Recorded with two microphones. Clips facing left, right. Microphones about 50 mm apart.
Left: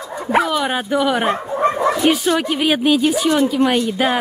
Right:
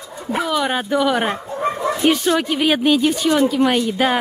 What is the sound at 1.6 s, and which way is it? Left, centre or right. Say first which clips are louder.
Bow-wow: left 4 dB; left.